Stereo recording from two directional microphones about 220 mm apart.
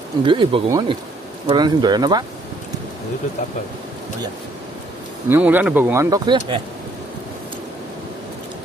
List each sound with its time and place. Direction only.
0.2 s speech: 20° right (ahead or behind)
5.3 s speech: 10° right (ahead or behind)